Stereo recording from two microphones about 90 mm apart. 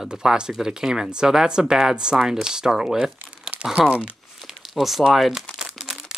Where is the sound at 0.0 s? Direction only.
5° right (ahead or behind).